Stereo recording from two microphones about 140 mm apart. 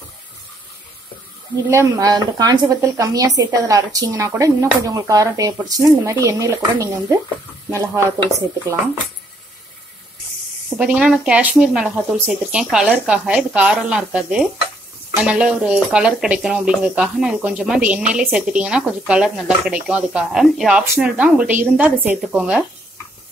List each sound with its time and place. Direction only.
1.7 s speech: 25° right (ahead or behind)
10.8 s speech: 10° right (ahead or behind)